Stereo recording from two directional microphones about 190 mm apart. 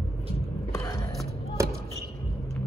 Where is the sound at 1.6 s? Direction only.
15° right (ahead or behind).